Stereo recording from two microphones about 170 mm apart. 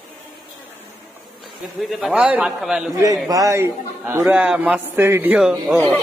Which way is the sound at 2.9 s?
20° right (ahead or behind).